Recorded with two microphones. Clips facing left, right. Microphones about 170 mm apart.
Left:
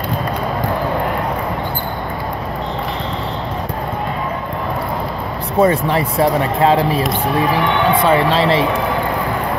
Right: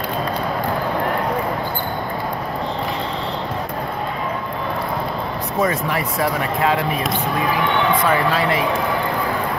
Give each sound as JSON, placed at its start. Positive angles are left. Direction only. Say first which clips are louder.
{"t": 5.6, "sound": "speech", "louder": "left 7 dB", "side_deg": 30}